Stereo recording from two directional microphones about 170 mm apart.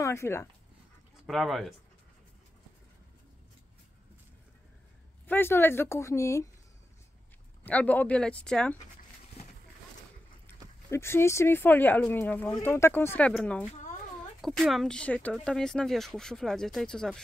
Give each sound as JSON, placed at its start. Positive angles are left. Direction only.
{"t": 0.0, "sound": "speech", "side_deg": 15}
{"t": 1.2, "sound": "speech", "side_deg": 0}
{"t": 5.2, "sound": "speech", "side_deg": 10}
{"t": 7.6, "sound": "speech", "side_deg": 10}
{"t": 10.9, "sound": "speech", "side_deg": 15}